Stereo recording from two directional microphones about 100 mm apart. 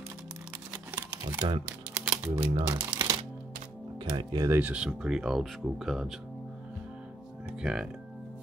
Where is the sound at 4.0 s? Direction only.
50° right (ahead or behind).